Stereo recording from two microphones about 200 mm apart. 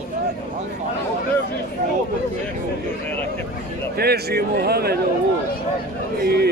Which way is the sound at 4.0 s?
50° right (ahead or behind).